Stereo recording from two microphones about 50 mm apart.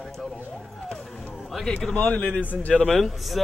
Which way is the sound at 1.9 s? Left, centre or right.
Left.